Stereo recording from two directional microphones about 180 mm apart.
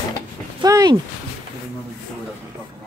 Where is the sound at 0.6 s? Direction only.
20° right (ahead or behind).